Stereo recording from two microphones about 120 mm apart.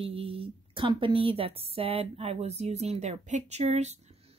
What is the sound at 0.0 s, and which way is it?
A woman's voice, 50° right (ahead or behind).